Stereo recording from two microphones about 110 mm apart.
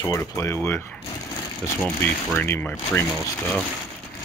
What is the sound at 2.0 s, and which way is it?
Speech, 15° left (ahead or behind).